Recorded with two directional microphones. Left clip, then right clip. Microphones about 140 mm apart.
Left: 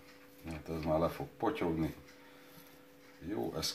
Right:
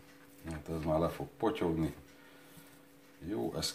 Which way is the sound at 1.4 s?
15° left (ahead or behind).